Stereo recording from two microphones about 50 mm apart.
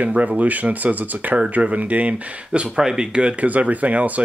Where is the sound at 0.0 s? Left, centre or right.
Right.